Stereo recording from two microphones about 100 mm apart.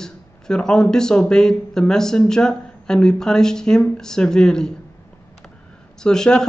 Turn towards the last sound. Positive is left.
turn(degrees=5)  # may be behind; listen again after turning